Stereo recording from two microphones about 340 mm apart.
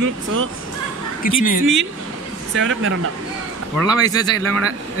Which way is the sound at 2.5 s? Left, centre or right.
Right.